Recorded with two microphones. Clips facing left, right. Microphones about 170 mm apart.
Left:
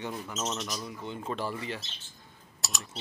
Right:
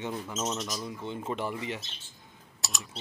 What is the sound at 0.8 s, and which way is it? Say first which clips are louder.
Speech: right 2 dB; 20° right (ahead or behind).